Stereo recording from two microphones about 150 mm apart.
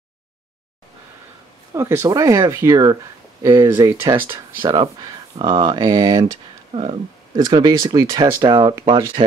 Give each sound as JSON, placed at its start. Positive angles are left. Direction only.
{"t": 1.7, "sound": "speech", "side_deg": -20}
{"t": 6.7, "sound": "speech", "side_deg": -40}
{"t": 7.3, "sound": "speech", "side_deg": -25}